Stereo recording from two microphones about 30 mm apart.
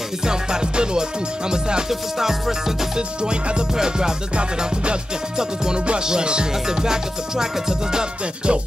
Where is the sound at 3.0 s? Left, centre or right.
Right.